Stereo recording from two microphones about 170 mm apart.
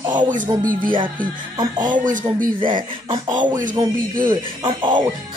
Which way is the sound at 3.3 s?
50° right (ahead or behind).